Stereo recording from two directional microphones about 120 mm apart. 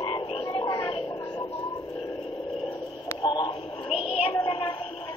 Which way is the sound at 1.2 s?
40° left (ahead or behind).